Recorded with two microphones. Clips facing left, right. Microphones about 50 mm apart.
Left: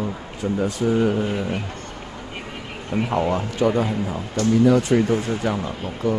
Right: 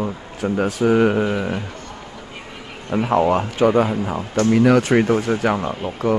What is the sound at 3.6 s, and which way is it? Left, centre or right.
Speech, right.